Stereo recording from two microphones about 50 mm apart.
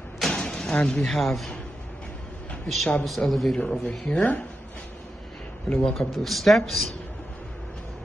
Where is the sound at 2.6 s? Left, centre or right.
Centre.